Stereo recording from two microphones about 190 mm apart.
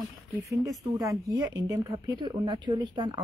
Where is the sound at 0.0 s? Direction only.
15° right (ahead or behind).